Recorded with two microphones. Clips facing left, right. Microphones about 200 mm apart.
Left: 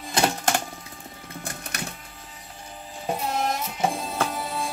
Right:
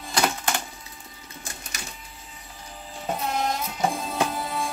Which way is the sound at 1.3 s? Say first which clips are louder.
Left 5 dB; 60° left (ahead or behind).